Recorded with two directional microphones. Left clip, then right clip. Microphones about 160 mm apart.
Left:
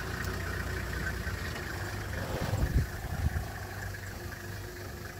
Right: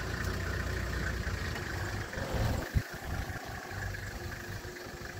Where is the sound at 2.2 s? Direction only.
35° left (ahead or behind).